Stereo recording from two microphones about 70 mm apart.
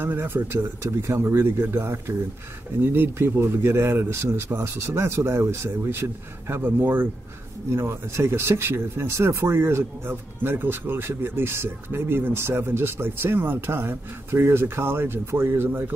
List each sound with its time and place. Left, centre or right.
0.0 s speech: right